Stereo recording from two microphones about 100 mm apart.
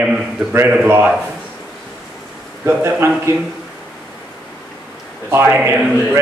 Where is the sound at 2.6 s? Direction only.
25° right (ahead or behind).